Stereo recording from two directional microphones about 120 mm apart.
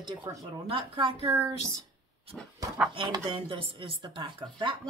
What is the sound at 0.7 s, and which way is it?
Speech, 45° right (ahead or behind).